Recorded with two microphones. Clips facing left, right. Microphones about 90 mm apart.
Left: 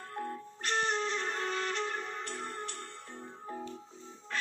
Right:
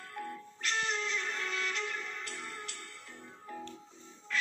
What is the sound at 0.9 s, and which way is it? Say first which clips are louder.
Music: left 3 dB; 40° left (ahead or behind).